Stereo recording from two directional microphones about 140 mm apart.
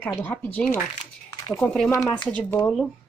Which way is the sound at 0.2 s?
10° left (ahead or behind).